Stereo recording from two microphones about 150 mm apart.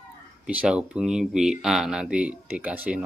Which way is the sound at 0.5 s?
10° right (ahead or behind).